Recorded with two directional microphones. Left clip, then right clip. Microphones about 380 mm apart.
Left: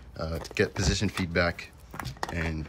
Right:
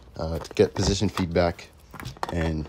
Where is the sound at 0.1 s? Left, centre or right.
Centre.